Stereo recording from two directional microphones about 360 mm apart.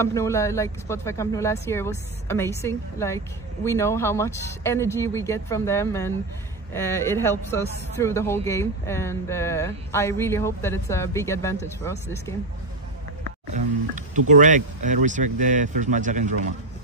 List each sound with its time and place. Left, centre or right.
0.0 s speech: centre
14.3 s speech: right